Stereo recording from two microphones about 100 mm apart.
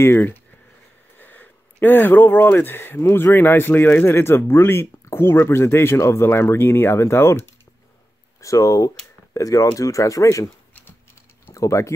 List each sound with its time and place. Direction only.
0.0 s speech: 25° left (ahead or behind)
11.5 s speech: 30° left (ahead or behind)